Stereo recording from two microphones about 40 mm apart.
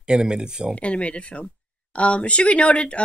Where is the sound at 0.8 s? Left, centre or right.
Left.